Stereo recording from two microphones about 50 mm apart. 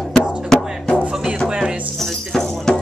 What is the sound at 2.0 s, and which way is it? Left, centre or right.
Tambourine, centre.